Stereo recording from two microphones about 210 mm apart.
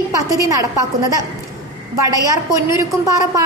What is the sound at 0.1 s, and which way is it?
A woman's voice, 15° right (ahead or behind).